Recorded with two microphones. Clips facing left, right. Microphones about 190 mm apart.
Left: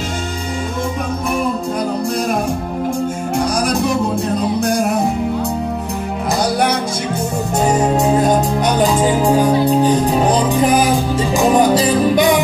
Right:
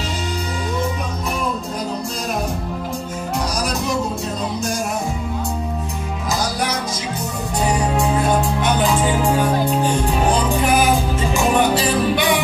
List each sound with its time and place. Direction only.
4.6 s music: 60° left (ahead or behind)
7.5 s music: 45° left (ahead or behind)